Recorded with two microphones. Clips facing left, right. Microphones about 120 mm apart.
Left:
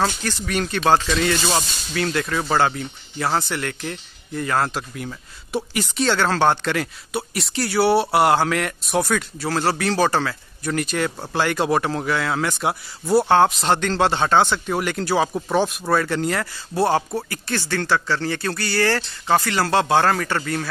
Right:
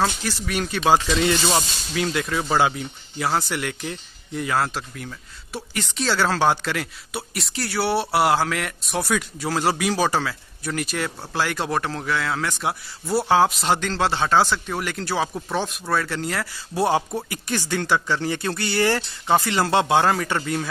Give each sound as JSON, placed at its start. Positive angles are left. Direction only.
{"t": 0.0, "sound": "speech", "side_deg": -5}
{"t": 1.1, "sound": "speech", "side_deg": -20}
{"t": 5.9, "sound": "speech", "side_deg": 0}
{"t": 16.7, "sound": "speech", "side_deg": -15}